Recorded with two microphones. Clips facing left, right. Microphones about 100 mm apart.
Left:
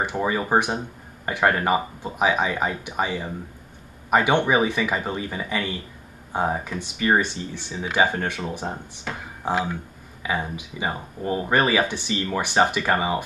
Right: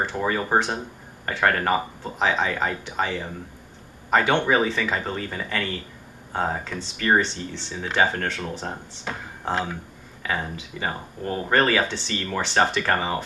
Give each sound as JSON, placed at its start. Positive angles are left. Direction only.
{"t": 0.0, "sound": "speech", "side_deg": 15}